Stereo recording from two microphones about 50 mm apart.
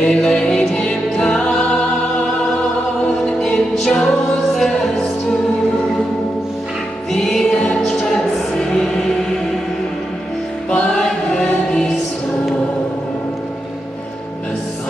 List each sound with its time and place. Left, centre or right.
0.0 s choir: centre
3.4 s music: centre
7.1 s music: centre
10.7 s choir: centre